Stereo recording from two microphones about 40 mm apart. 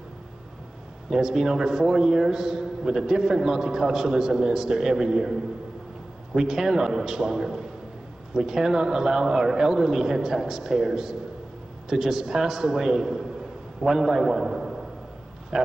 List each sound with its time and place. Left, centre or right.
1.1 s a man's voice: centre